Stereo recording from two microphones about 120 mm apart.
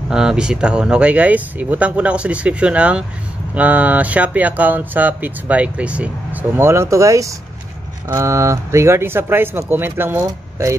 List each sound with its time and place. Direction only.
0.1 s speech: 5° right (ahead or behind); by 10.8 s 25° right (ahead or behind)